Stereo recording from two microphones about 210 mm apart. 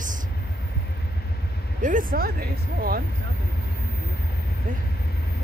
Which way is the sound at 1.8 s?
40° right (ahead or behind).